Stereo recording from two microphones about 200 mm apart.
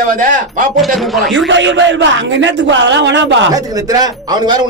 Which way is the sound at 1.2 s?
65° right (ahead or behind).